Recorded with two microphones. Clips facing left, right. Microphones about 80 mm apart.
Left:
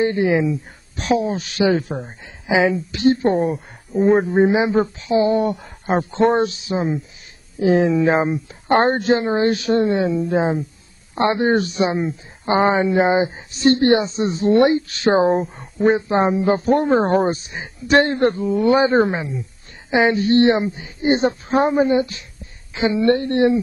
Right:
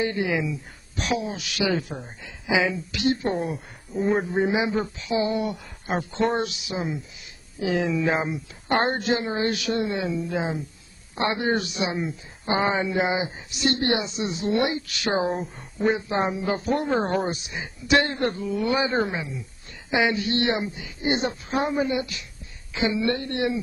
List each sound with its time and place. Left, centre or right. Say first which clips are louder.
0.0 s a woman's voice: left 8 dB; left